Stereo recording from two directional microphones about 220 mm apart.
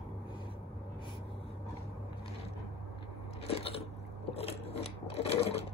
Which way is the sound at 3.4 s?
25° left (ahead or behind).